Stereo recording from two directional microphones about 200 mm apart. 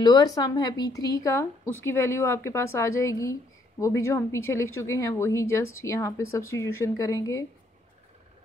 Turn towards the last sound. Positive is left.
turn(degrees=15)  # may be behind; listen again after turning